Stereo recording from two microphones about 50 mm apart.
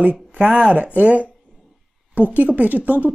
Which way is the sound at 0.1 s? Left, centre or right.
Right.